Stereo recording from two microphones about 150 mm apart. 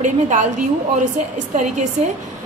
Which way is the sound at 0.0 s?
55° right (ahead or behind).